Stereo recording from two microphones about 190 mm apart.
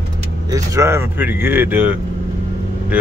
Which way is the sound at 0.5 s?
15° right (ahead or behind).